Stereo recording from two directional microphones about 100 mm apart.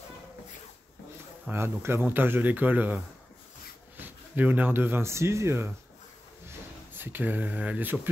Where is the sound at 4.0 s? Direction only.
15° right (ahead or behind).